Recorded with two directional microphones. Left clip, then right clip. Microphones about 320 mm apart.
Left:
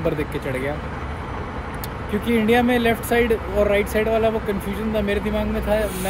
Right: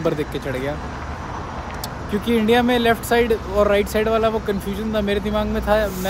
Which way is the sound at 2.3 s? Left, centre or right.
Centre.